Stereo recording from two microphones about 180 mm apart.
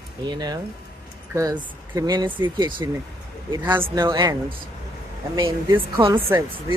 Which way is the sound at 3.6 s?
10° right (ahead or behind).